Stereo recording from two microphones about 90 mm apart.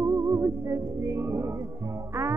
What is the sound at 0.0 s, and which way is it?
Music, 30° right (ahead or behind).